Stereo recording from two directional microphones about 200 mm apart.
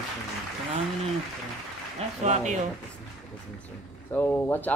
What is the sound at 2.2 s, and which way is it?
Speech, 35° right (ahead or behind).